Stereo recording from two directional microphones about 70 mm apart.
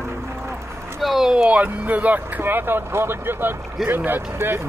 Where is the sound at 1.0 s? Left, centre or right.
Centre.